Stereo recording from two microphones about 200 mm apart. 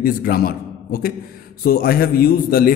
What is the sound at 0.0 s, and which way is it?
A man's voice, 50° left (ahead or behind).